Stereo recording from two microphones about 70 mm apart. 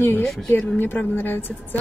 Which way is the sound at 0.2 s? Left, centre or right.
Centre.